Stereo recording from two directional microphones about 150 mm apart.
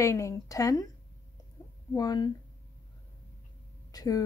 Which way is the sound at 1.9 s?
25° left (ahead or behind).